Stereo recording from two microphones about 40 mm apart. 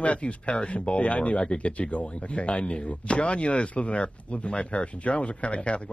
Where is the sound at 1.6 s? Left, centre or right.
Left.